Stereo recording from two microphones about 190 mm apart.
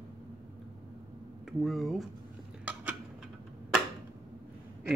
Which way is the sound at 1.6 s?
Centre (ahead or behind).